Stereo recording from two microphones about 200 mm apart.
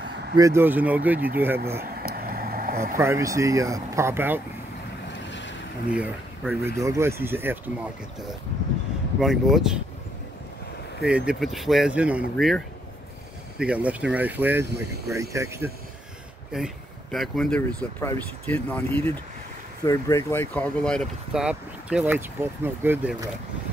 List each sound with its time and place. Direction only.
0.4 s speech: 15° right (ahead or behind)
2.0 s vehicle: 50° right (ahead or behind)
3.0 s speech: 15° right (ahead or behind)
5.3 s vehicle: 65° left (ahead or behind)
5.9 s speech: 5° right (ahead or behind)
9.2 s speech: centre (ahead or behind)
11.0 s speech: 5° right (ahead or behind)
16.5 s speech: centre (ahead or behind)